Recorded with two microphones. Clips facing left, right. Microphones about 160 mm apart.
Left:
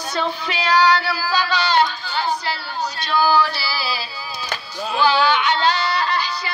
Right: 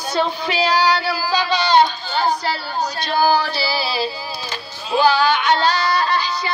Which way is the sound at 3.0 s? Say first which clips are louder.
Even; 40° right (ahead or behind).